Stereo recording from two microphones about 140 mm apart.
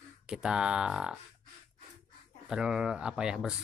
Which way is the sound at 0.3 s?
5° right (ahead or behind).